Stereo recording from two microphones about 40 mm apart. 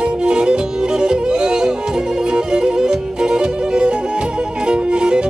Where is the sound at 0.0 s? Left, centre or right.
Right.